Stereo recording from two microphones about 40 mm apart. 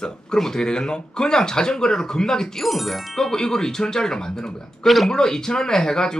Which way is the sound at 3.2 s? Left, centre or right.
Centre.